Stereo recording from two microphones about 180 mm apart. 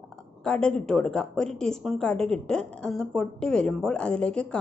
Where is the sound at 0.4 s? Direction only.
5° left (ahead or behind).